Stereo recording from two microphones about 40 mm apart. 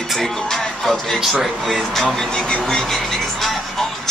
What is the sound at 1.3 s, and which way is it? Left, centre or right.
Speech, centre.